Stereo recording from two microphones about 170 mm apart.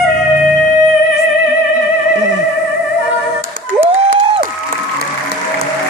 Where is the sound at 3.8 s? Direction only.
30° right (ahead or behind).